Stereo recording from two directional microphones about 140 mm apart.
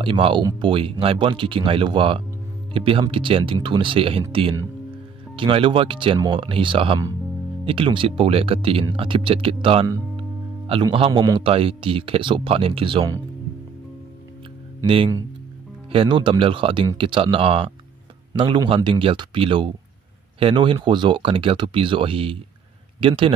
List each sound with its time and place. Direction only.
0.0 s a man's voice: 35° right (ahead or behind)
15.9 s a man's voice: 40° right (ahead or behind)